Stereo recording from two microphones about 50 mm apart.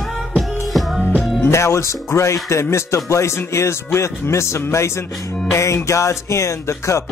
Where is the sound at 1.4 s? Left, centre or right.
Left.